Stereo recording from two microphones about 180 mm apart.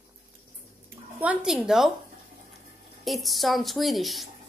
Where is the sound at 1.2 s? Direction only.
5° right (ahead or behind).